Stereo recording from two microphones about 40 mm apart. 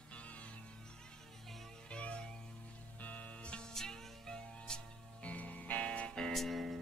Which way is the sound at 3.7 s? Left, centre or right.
Centre.